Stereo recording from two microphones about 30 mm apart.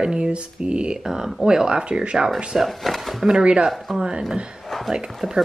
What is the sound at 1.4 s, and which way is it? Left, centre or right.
Speech, right.